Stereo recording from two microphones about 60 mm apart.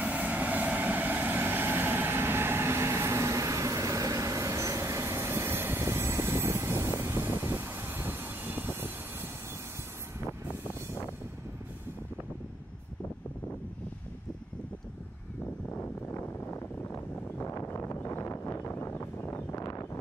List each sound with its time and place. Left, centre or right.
0.0 s vehicle: right
15.7 s vehicle: left
17.7 s a sound: left
19.5 s wind noise: left